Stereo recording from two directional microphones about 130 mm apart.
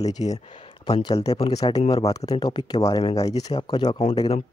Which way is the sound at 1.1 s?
50° left (ahead or behind).